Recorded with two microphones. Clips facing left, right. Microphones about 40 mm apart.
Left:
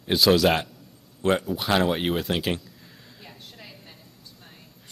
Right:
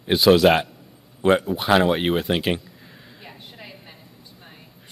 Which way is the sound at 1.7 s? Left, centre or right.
Centre.